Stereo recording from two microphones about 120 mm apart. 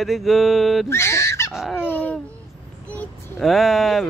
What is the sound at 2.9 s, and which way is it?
Vehicle, 10° left (ahead or behind).